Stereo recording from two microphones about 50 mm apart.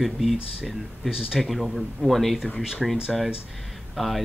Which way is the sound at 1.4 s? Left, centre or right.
Centre.